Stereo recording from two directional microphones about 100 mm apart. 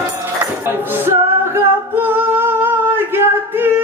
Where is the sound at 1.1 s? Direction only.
25° right (ahead or behind).